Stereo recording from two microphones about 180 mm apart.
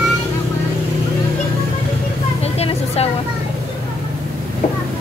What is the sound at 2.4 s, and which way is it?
Speech, 35° left (ahead or behind).